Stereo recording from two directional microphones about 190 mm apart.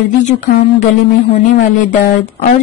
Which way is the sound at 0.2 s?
40° left (ahead or behind).